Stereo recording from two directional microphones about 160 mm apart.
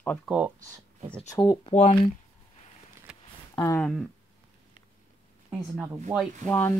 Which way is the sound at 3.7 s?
5° left (ahead or behind).